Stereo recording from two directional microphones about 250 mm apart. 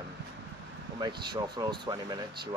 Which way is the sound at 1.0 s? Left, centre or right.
Centre.